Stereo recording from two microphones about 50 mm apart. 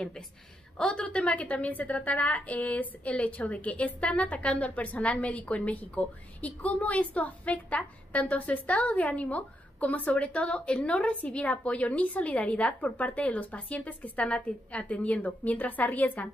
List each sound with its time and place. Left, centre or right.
0.7 s a woman's voice: left